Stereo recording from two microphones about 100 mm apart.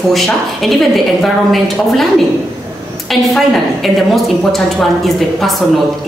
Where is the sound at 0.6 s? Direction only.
5° left (ahead or behind).